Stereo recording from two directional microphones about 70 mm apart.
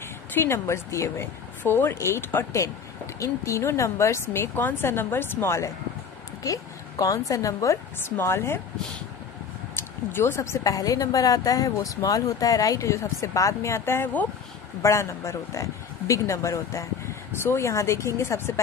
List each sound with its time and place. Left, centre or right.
0.3 s speech: left
6.4 s a woman's voice: left
8.2 s speech: left
9.8 s speech: left
10.6 s a woman's voice: left